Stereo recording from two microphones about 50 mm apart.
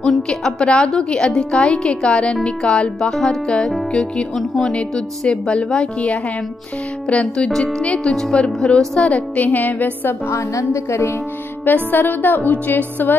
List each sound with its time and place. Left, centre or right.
0.3 s a woman's voice: centre
8.7 s music: left
10.3 s a woman's voice: left
11.6 s music: left